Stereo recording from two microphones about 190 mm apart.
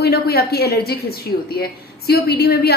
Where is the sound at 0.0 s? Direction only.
55° left (ahead or behind).